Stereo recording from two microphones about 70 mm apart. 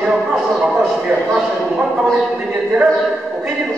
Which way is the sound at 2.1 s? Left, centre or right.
Centre.